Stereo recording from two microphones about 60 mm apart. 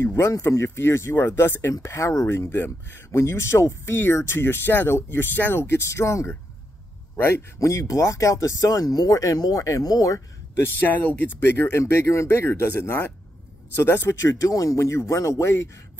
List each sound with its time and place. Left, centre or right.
0.0 s speech: left
1.7 s speech: left
5.6 s speech: left
7.5 s speech: left
10.8 s speech: left
14.2 s speech: left
14.5 s speech: left